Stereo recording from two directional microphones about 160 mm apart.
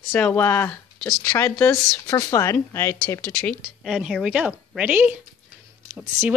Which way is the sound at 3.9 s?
5° right (ahead or behind).